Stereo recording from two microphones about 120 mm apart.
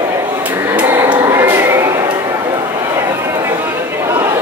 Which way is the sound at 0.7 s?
20° right (ahead or behind).